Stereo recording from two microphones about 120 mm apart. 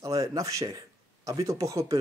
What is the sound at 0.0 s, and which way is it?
Speech, 30° right (ahead or behind).